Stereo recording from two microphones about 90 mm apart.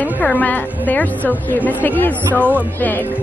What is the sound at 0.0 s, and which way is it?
A woman's voice, 15° left (ahead or behind).